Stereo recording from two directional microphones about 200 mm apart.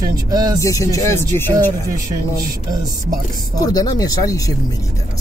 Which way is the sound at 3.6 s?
20° left (ahead or behind).